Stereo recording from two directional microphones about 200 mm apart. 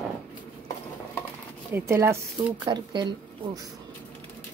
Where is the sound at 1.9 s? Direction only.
15° right (ahead or behind).